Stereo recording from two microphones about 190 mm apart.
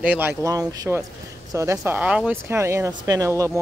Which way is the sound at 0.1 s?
10° right (ahead or behind).